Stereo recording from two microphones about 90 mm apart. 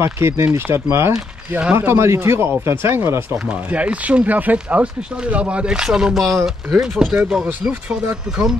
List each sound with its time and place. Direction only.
0.0 s speech: 30° right (ahead or behind)
3.3 s speech: 15° right (ahead or behind)